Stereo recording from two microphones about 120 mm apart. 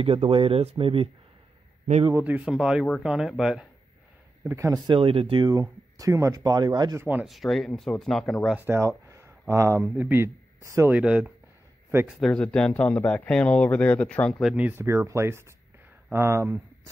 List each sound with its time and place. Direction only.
0.0 s speech: 55° right (ahead or behind)
2.1 s speech: 15° right (ahead or behind)
4.5 s speech: 25° right (ahead or behind)
4.8 s speech: 45° right (ahead or behind)
5.5 s speech: 30° right (ahead or behind)
7.0 s speech: 15° right (ahead or behind)
7.2 s speech: centre (ahead or behind)
8.5 s speech: 20° right (ahead or behind)
9.8 s speech: 15° right (ahead or behind)
10.9 s speech: 10° right (ahead or behind)
12.1 s speech: centre (ahead or behind)
14.4 s speech: 10° right (ahead or behind)